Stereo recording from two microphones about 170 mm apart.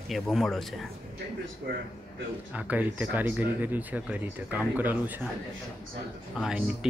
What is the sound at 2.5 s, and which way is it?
Speech, 10° right (ahead or behind).